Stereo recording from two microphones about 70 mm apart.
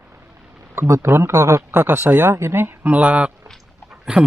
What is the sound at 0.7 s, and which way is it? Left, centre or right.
Speech, right.